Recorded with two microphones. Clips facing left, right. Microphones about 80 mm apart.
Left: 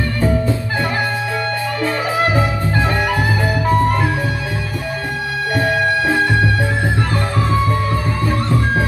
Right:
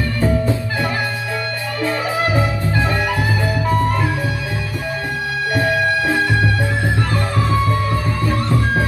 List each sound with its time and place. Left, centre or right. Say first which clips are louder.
3.6 s music: left 3 dB; left